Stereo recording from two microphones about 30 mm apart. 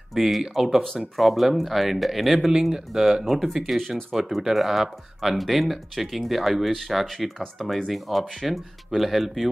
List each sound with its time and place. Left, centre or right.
0.1 s speech: centre
2.3 s speech: centre